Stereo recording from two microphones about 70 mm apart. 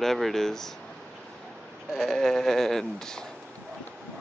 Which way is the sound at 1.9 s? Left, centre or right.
Centre.